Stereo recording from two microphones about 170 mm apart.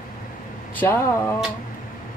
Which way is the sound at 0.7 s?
15° left (ahead or behind).